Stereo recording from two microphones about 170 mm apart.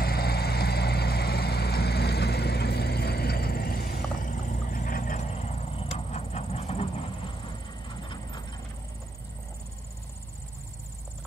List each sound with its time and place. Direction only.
0.0 s vehicle: 65° left (ahead or behind); by 6.9 s 35° left (ahead or behind)
8.1 s vehicle: 25° left (ahead or behind)